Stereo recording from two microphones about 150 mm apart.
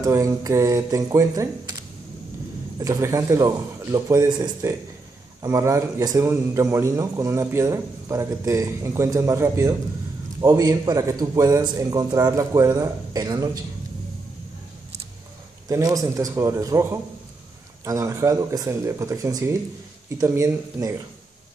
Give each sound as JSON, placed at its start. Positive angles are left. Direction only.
{"t": 0.0, "sound": "a man's voice", "side_deg": -20}
{"t": 2.8, "sound": "a man's voice", "side_deg": -20}
{"t": 15.7, "sound": "a man's voice", "side_deg": -25}